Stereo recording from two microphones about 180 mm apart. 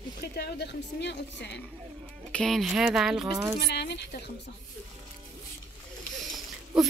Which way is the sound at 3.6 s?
65° left (ahead or behind).